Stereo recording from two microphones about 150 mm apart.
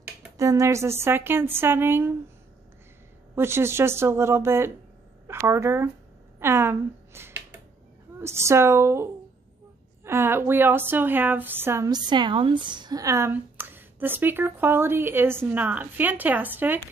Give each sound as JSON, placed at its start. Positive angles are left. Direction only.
{"t": 0.4, "sound": "a woman's voice", "side_deg": -20}
{"t": 3.3, "sound": "a woman's voice", "side_deg": -15}